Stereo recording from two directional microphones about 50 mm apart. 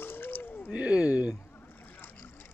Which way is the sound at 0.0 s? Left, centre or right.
Left.